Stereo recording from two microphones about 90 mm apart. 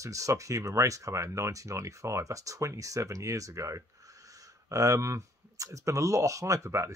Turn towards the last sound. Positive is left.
turn(degrees=-35)  # may be behind; listen again after turning